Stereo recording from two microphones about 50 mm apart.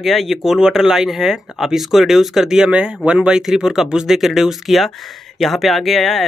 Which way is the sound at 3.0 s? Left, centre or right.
Right.